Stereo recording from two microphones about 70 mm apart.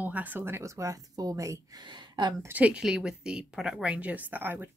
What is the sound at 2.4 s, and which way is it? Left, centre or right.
Speech, right.